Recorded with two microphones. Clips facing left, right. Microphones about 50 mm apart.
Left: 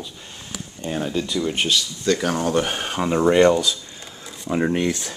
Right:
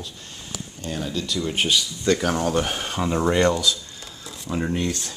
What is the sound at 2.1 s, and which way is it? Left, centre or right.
Speech, centre.